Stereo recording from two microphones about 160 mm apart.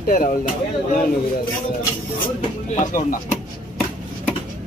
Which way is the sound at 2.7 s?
55° left (ahead or behind).